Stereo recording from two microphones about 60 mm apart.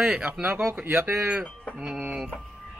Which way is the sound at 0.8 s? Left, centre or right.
Right.